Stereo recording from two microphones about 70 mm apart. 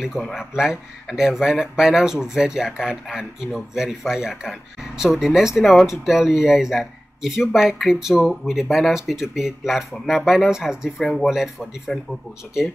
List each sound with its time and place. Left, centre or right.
0.2 s speech: centre
11.0 s speech: centre